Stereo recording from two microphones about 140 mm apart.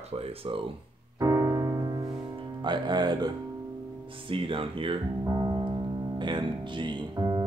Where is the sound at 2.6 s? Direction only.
30° right (ahead or behind).